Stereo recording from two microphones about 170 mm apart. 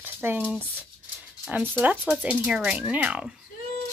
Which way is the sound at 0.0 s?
10° right (ahead or behind).